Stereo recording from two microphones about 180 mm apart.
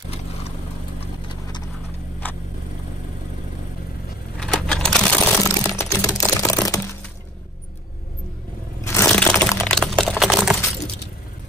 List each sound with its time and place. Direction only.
4.4 s coin: 5° left (ahead or behind)
5.3 s typing: 15° left (ahead or behind)
8.8 s crack: 15° left (ahead or behind); by 10.6 s centre (ahead or behind)